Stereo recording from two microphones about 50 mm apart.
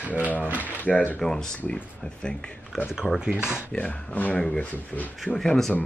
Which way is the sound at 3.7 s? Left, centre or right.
Left.